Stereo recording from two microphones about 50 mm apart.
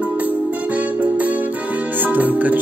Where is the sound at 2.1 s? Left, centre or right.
Right.